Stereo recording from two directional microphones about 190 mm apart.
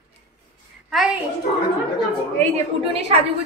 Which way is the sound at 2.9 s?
35° right (ahead or behind).